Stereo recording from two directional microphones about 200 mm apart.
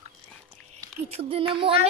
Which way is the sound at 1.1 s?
30° right (ahead or behind).